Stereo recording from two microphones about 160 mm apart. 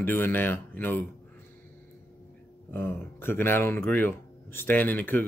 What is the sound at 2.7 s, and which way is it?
Speech, 15° left (ahead or behind).